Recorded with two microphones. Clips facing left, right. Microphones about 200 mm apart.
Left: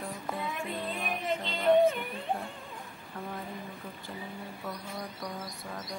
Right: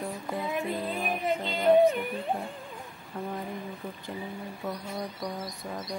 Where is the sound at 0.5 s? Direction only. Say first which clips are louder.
Right 5 dB; centre (ahead or behind).